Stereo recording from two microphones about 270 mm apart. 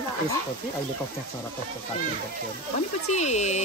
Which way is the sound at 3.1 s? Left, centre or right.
Left.